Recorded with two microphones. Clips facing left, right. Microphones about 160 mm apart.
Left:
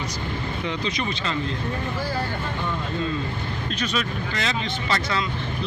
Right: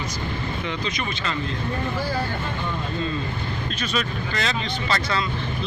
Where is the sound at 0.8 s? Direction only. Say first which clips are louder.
Left 1 dB; 30° left (ahead or behind).